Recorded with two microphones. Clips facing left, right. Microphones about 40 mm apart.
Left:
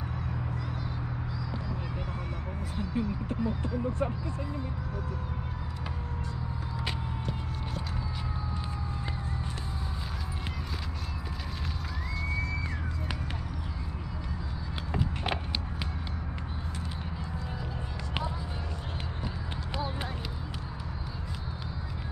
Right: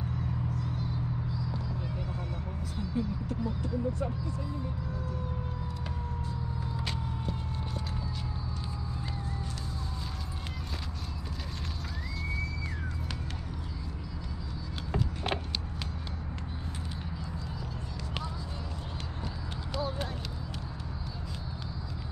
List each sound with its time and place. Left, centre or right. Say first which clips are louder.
2.8 s speech: left 1 dB; left